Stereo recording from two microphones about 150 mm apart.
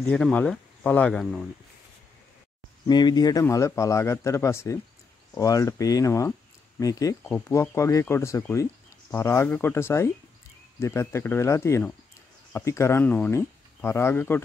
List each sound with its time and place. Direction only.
0.0 s speech: 5° left (ahead or behind)
2.9 s speech: 30° left (ahead or behind)